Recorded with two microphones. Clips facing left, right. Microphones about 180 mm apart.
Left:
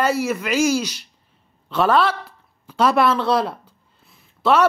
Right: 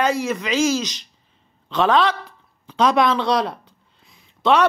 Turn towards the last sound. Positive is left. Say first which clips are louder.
# even
turn(degrees=5)  # may be behind; listen again after turning